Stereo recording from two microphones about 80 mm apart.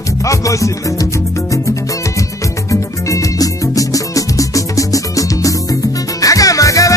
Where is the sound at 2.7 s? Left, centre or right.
Left.